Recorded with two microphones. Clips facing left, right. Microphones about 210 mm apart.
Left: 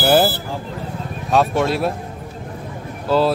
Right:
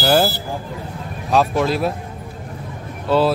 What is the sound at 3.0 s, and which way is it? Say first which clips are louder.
Speech: even; centre (ahead or behind).